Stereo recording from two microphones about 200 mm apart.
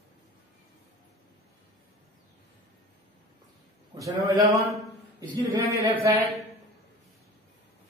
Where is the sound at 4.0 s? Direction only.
15° right (ahead or behind).